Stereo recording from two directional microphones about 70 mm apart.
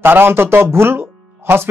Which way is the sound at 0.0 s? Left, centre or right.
Right.